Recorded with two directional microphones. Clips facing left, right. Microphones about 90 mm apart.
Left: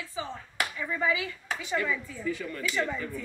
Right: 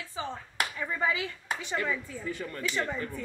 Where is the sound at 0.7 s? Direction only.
30° right (ahead or behind).